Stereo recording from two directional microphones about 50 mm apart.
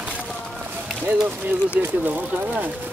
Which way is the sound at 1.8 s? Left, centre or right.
Right.